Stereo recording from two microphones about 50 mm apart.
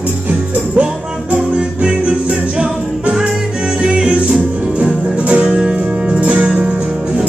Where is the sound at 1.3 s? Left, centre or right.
Right.